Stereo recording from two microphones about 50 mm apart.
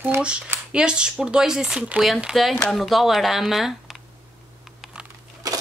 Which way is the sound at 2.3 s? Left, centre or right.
Centre.